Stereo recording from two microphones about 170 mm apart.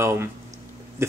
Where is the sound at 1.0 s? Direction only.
15° right (ahead or behind).